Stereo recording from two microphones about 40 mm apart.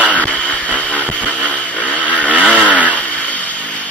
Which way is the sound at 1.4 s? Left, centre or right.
Left.